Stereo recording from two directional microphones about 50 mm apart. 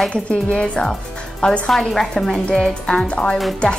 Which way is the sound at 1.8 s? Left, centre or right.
Centre.